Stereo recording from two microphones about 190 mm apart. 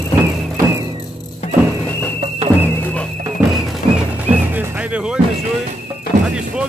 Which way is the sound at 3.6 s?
5° right (ahead or behind).